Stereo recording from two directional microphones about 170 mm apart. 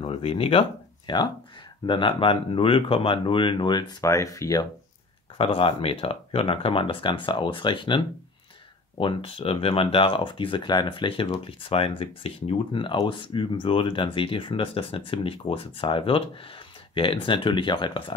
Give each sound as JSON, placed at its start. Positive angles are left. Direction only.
{"t": 0.0, "sound": "speech", "side_deg": 35}
{"t": 5.4, "sound": "speech", "side_deg": 30}